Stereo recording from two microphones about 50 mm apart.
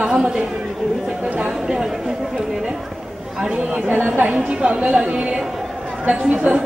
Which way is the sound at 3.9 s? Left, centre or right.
Right.